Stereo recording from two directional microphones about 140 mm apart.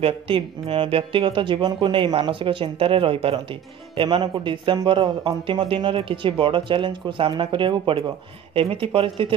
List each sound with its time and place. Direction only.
0.0 s speech: 40° right (ahead or behind)